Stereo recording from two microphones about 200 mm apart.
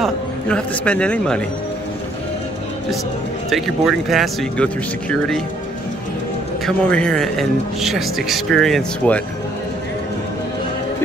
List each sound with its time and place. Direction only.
0.0 s speech: 5° left (ahead or behind)
3.4 s speech: centre (ahead or behind)
6.6 s speech: 5° left (ahead or behind)